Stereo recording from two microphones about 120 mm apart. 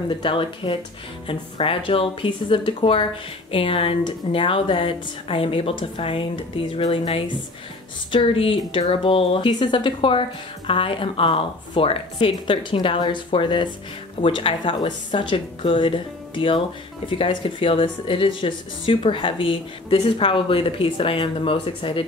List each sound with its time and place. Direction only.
0.2 s speech: 45° left (ahead or behind)